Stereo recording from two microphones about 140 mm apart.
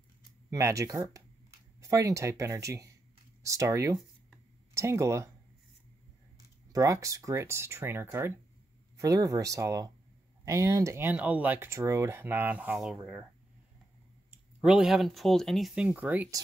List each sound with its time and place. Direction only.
0.5 s speech: 20° right (ahead or behind)
6.7 s speech: 25° right (ahead or behind); by 13.2 s 5° right (ahead or behind)
14.6 s speech: 5° right (ahead or behind)